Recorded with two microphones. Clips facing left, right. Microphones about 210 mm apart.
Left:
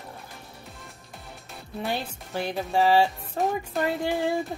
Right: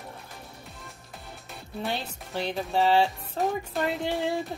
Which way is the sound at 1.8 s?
5° left (ahead or behind).